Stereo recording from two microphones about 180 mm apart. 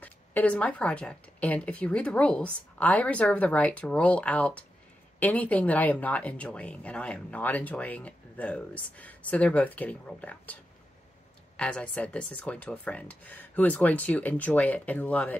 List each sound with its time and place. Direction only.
0.0 s speech: 10° left (ahead or behind)